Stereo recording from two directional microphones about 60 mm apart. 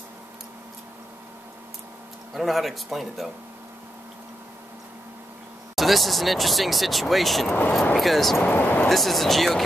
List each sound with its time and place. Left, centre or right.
2.3 s speech: centre
5.8 s speech: centre
8.4 s speech: left
8.8 s speech: centre